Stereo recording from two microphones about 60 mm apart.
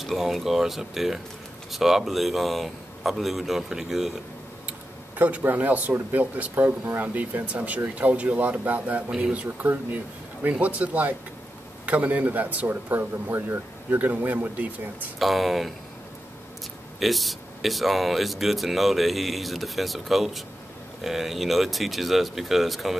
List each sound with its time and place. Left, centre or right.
0.0 s speech: centre
4.6 s speech: right
6.8 s speech: right
7.2 s speech: right
15.1 s speech: centre
17.0 s speech: centre